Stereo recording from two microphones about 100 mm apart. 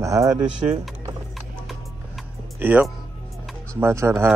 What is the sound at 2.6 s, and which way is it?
Speech, 15° right (ahead or behind).